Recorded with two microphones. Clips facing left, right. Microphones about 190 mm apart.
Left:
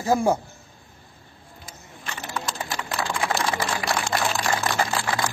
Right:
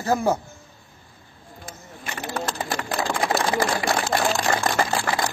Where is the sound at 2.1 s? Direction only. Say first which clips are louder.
Right 3 dB; 60° right (ahead or behind).